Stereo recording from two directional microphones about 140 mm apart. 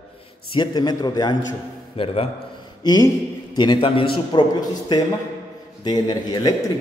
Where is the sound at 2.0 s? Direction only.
45° left (ahead or behind).